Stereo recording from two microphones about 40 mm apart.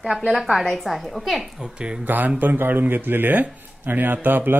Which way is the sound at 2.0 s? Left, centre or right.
Right.